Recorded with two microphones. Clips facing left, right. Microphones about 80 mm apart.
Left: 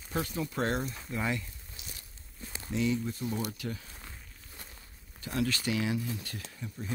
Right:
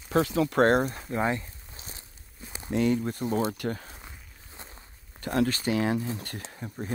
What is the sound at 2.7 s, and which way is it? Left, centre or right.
Speech, right.